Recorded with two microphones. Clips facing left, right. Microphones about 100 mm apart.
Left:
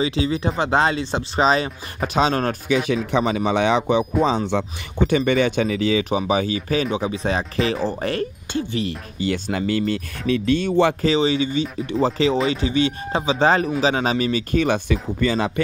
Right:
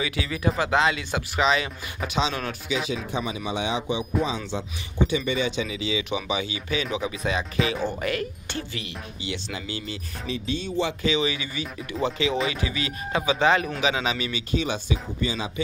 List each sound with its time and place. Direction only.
0.0 s speech: 30° left (ahead or behind); by 2.8 s 50° left (ahead or behind)
3.1 s speech: 70° left (ahead or behind)
11.0 s speech: 35° left (ahead or behind); by 15.6 s 60° left (ahead or behind)